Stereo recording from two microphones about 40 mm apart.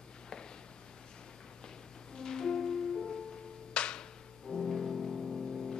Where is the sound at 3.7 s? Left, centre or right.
Left.